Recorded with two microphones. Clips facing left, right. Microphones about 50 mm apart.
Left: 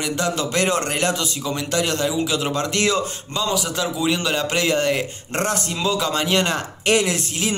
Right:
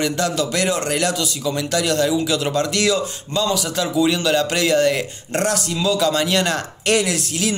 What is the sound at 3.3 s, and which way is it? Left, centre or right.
A man's voice, centre.